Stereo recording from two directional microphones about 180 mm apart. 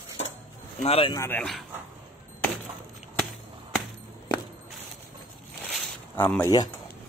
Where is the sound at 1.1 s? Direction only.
10° left (ahead or behind).